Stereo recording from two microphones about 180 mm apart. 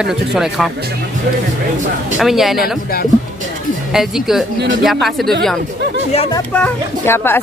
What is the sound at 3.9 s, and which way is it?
Speech, centre (ahead or behind).